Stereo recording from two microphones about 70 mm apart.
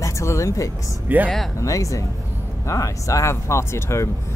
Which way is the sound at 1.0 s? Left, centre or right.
Right.